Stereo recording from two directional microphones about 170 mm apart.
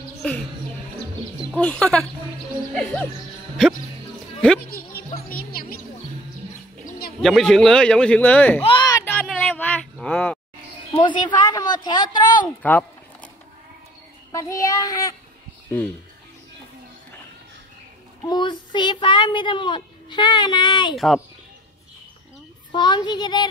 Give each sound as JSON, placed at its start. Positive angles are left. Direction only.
{"t": 0.2, "sound": "music", "side_deg": 5}
{"t": 1.5, "sound": "speech", "side_deg": 10}
{"t": 4.6, "sound": "music", "side_deg": 60}
{"t": 7.2, "sound": "speech", "side_deg": 0}
{"t": 8.6, "sound": "a sound", "side_deg": 25}
{"t": 9.0, "sound": "a sound", "side_deg": 10}
{"t": 11.0, "sound": "a child's voice", "side_deg": 25}
{"t": 12.6, "sound": "a sound", "side_deg": 10}
{"t": 14.3, "sound": "a child's voice", "side_deg": 20}
{"t": 18.2, "sound": "a child's voice", "side_deg": 25}
{"t": 20.9, "sound": "speech", "side_deg": 0}
{"t": 22.7, "sound": "a child's voice", "side_deg": 25}